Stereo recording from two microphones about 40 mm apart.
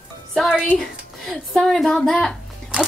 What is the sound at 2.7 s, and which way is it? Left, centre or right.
Music, right.